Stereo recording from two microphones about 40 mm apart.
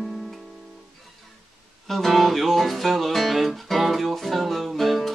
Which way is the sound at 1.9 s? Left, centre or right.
Centre.